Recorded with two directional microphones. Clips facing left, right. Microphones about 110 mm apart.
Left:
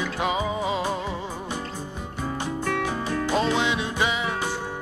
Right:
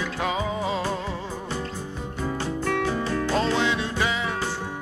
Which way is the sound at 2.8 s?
15° left (ahead or behind).